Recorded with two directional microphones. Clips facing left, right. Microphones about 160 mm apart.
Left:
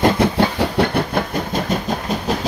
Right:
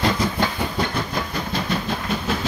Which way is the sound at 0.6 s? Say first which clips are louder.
Left 7 dB; 65° left (ahead or behind).